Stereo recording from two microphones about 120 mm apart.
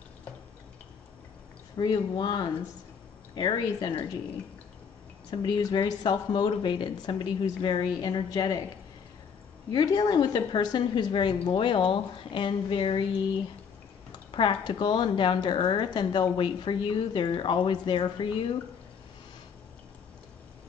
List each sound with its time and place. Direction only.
1.8 s speech: 35° left (ahead or behind)
5.3 s speech: 40° left (ahead or behind)
9.7 s speech: 35° left (ahead or behind)
14.3 s speech: 45° left (ahead or behind)